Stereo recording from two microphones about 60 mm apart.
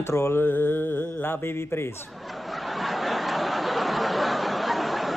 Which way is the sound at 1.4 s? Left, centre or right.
Left.